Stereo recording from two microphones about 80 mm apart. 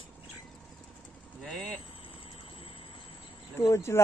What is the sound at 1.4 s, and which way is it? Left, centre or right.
Vehicle, centre.